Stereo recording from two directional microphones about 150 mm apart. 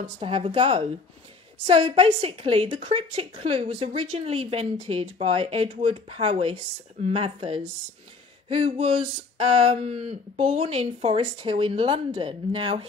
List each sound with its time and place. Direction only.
0.2 s speech: 35° right (ahead or behind)